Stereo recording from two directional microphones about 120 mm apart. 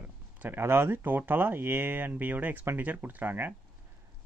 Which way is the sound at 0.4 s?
20° right (ahead or behind).